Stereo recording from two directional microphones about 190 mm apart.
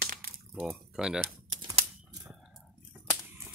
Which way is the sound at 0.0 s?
50° right (ahead or behind).